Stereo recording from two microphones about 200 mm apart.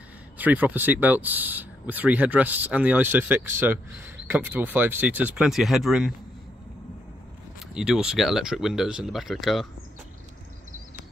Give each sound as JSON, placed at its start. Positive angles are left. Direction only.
{"t": 0.4, "sound": "speech", "side_deg": -10}
{"t": 7.7, "sound": "speech", "side_deg": -5}